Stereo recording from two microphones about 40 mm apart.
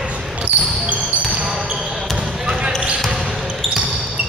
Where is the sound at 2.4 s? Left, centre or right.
Right.